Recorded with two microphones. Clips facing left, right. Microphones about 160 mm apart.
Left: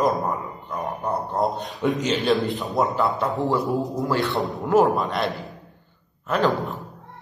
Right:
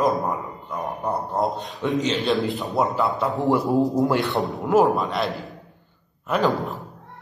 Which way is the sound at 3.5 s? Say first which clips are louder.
Right 3 dB; 20° right (ahead or behind).